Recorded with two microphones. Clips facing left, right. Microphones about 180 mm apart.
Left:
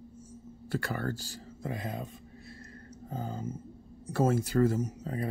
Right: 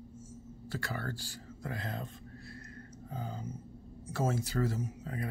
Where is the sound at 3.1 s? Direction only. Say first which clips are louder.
Left 5 dB; 45° left (ahead or behind).